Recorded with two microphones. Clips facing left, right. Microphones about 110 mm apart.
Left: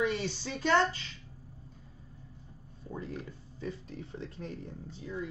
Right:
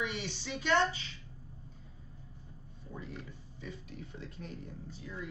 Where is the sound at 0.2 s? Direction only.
40° left (ahead or behind).